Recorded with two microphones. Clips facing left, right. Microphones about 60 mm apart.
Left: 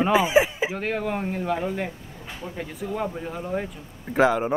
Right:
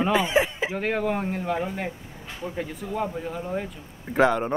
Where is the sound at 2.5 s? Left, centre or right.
Centre.